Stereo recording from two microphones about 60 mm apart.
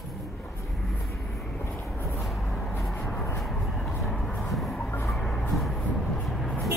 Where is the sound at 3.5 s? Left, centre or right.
Centre.